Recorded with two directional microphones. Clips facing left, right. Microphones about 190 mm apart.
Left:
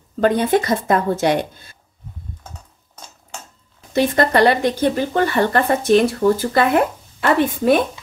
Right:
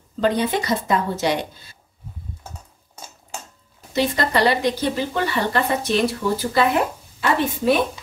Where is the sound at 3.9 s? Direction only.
55° left (ahead or behind).